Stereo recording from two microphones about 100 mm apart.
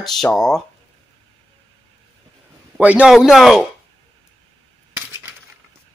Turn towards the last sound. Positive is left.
turn(degrees=-25)  # may be behind; listen again after turning